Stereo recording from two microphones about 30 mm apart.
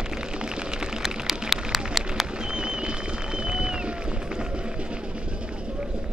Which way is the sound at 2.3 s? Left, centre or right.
Right.